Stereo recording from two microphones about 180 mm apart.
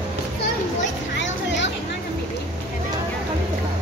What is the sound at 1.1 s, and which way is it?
Music, 85° left.